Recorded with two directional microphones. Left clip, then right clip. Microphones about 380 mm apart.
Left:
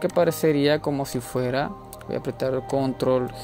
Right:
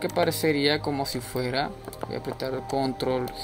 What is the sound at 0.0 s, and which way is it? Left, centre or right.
Speech, left.